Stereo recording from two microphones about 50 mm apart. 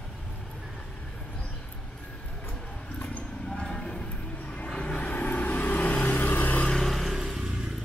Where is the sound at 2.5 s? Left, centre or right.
Left.